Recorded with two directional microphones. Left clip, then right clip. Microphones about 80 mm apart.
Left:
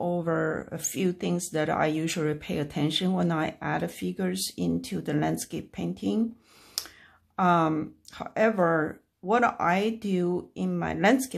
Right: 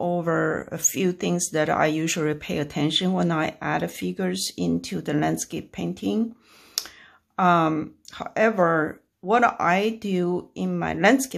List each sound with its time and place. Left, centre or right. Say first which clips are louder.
0.0 s speech: right 4 dB; right
6.8 s clicking: right 5 dB; right
7.3 s speech: right 4 dB; right